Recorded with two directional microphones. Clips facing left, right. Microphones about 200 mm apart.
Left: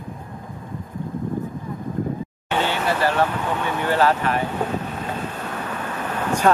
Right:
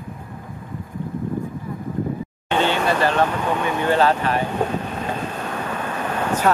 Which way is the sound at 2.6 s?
20° right (ahead or behind).